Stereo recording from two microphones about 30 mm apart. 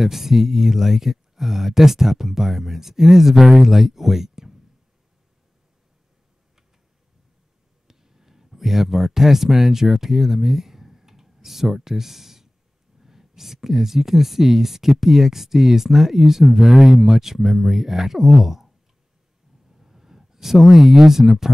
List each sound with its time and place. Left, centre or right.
0.0 s speech: centre
7.9 s speech: centre
19.8 s speech: centre